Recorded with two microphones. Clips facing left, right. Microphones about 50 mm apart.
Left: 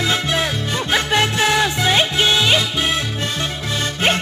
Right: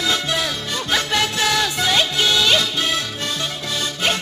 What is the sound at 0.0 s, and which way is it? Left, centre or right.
Music, left.